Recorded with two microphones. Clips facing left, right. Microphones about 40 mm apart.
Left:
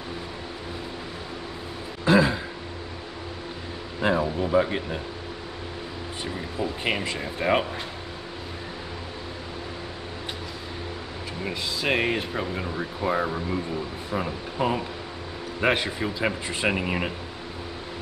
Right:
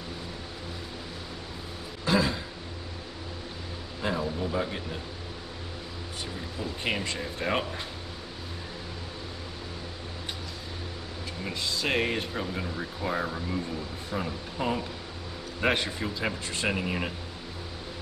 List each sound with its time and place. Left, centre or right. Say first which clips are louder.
2.0 s throat clearing: left 6 dB; centre
4.0 s speech: left 6 dB; left
6.2 s speech: left 7 dB; left
11.6 s speech: left 3 dB; centre